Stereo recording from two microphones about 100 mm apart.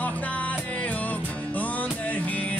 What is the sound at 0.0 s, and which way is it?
Music, 15° left (ahead or behind).